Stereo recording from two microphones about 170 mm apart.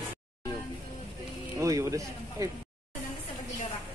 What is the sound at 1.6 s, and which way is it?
Speech, 20° right (ahead or behind).